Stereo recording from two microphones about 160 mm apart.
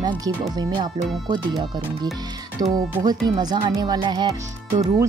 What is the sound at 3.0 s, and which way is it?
Speech, 25° right (ahead or behind).